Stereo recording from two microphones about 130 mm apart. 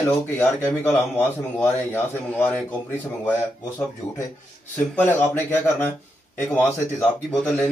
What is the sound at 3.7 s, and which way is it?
A man's voice, 20° left (ahead or behind).